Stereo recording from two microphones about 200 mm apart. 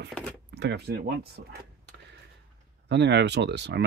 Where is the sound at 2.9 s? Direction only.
60° right (ahead or behind).